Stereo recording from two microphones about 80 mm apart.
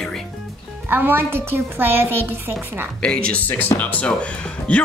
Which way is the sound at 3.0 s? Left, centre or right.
Centre.